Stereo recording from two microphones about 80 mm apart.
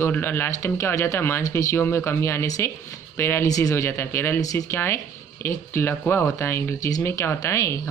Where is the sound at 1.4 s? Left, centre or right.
Left.